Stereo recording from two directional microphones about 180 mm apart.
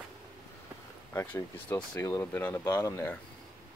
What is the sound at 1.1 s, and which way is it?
Speech, 15° left (ahead or behind).